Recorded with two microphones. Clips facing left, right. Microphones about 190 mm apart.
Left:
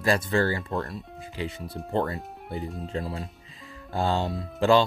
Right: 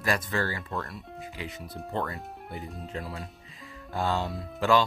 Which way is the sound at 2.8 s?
30° left (ahead or behind).